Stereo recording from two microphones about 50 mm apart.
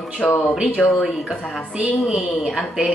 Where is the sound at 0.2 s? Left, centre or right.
Centre.